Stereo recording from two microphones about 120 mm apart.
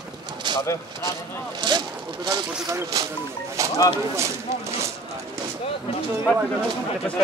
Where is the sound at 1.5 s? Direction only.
40° right (ahead or behind).